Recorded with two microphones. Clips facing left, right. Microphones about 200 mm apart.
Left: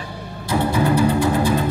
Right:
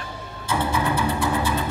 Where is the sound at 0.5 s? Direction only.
40° left (ahead or behind).